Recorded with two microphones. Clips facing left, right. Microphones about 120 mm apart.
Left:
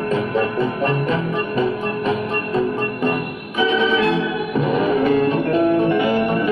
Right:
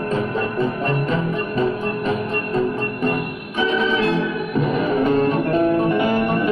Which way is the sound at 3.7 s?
40° right (ahead or behind).